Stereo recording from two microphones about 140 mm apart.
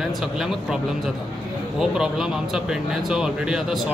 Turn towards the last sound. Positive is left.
turn(degrees=-5)  # may be behind; listen again after turning